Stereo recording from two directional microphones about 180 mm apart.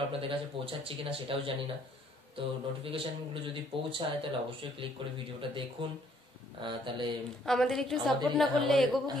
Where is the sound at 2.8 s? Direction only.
30° right (ahead or behind).